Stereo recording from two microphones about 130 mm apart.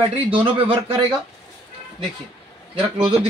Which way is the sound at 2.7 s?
40° right (ahead or behind).